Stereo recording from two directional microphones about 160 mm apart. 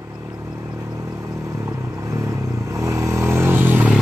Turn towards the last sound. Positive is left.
turn(degrees=-10)  # may be behind; listen again after turning